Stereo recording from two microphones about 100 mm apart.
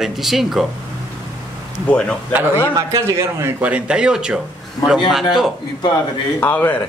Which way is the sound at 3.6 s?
10° right (ahead or behind).